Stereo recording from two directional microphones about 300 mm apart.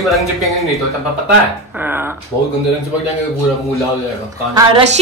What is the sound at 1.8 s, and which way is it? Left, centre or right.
Speech, centre.